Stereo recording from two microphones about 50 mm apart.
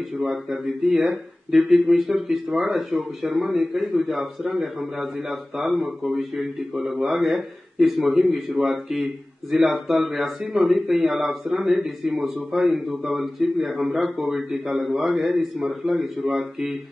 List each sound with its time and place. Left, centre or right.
0.2 s a man's voice: centre